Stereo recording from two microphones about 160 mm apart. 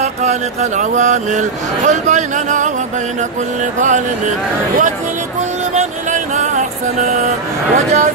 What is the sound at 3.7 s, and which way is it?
Speech, 50° right (ahead or behind).